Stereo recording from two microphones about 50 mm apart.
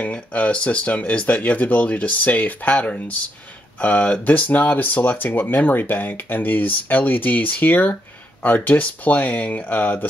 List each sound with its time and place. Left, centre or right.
0.0 s speech: left